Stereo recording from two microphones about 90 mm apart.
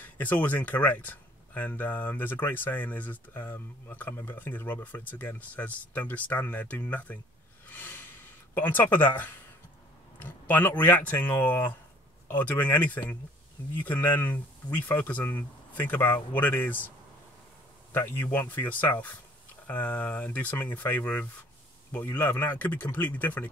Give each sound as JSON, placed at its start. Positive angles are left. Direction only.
{"t": 0.0, "sound": "speech", "side_deg": 20}
{"t": 7.6, "sound": "a sound", "side_deg": 20}
{"t": 8.5, "sound": "speech", "side_deg": 20}
{"t": 17.9, "sound": "speech", "side_deg": 25}